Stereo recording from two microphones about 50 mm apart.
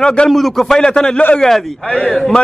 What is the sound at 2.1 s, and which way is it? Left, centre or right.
Speech, centre.